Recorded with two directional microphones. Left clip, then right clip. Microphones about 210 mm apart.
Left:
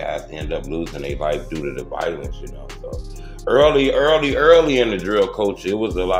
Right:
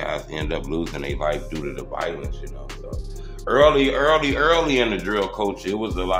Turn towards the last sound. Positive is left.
turn(degrees=15)  # may be behind; listen again after turning